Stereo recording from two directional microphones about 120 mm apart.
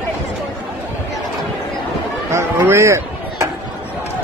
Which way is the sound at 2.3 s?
20° right (ahead or behind).